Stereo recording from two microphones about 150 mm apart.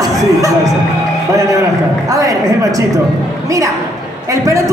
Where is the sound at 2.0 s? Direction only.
20° right (ahead or behind).